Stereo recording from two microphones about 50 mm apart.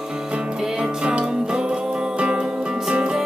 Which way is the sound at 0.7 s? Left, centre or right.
Centre.